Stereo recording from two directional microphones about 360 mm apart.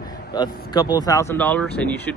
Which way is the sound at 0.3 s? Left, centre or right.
Centre.